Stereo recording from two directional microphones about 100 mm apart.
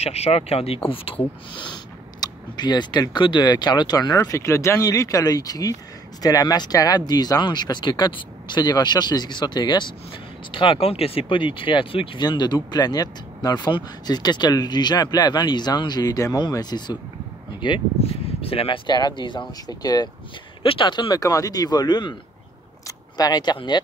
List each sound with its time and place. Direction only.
0.0 s speech: 90° left
0.8 s speech: 65° left (ahead or behind)
2.1 s speech: 45° left (ahead or behind)
10.5 s speech: 60° left (ahead or behind)
12.2 s speech: 45° left (ahead or behind)
18.4 s speech: 75° left (ahead or behind)
18.9 s speech: 45° left (ahead or behind)
20.6 s speech: 55° left (ahead or behind)